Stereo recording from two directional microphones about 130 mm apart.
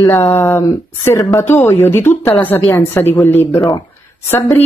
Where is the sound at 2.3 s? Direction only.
15° left (ahead or behind).